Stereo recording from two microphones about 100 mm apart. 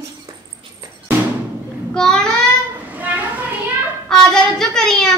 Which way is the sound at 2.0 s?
5° left (ahead or behind).